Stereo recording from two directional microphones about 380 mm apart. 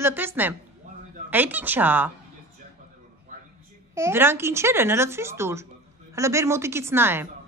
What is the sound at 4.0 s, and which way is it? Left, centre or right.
A woman's voice, centre.